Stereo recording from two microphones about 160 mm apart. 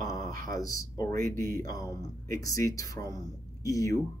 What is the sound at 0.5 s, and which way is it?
Speech, 20° left (ahead or behind).